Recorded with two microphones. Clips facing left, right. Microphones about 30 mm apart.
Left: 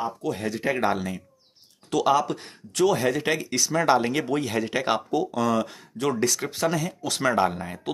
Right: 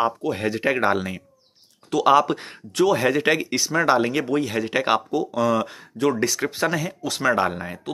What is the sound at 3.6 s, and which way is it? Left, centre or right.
Speech, centre.